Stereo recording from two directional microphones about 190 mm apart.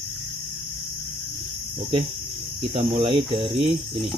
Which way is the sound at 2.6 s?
30° right (ahead or behind).